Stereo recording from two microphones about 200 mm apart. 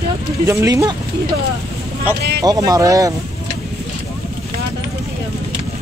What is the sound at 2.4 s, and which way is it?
Speech, 20° right (ahead or behind).